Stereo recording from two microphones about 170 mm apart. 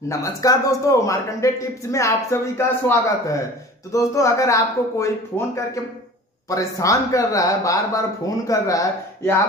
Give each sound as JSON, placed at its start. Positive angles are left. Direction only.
{"t": 0.1, "sound": "a man's voice", "side_deg": 20}